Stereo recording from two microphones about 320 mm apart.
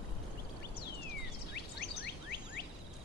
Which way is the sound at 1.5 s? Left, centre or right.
Left.